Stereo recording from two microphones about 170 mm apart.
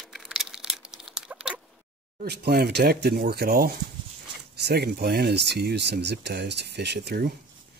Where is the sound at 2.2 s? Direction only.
70° right (ahead or behind).